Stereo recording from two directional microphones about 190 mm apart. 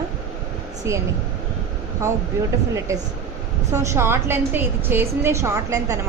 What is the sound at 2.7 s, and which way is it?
A woman's voice, 15° right (ahead or behind).